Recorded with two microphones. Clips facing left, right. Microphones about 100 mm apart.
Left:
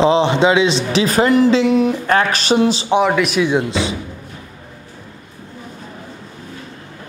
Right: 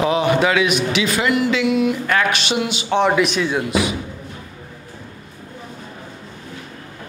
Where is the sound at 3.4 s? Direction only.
25° left (ahead or behind).